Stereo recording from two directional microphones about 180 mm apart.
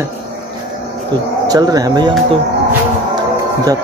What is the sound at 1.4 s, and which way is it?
Speech, 20° right (ahead or behind).